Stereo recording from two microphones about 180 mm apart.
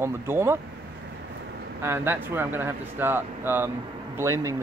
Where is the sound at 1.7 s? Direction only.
15° right (ahead or behind).